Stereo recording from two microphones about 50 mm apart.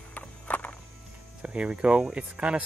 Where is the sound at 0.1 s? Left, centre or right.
Left.